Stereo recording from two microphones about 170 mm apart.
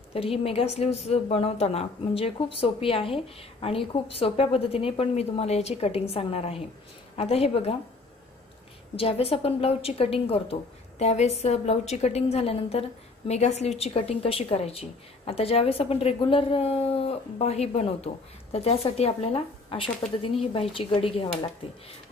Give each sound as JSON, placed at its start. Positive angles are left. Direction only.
{"t": 0.1, "sound": "a woman's voice", "side_deg": 35}
{"t": 8.9, "sound": "a woman's voice", "side_deg": 35}